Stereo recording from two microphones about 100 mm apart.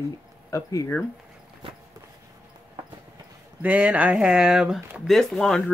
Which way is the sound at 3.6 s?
10° right (ahead or behind).